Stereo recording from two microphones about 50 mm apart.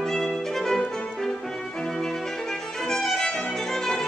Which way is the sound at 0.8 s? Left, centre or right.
Centre.